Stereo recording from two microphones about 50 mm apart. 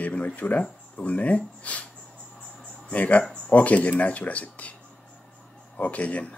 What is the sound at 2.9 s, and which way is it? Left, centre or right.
Speech, left.